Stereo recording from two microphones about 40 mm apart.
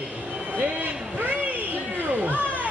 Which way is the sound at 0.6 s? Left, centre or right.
Right.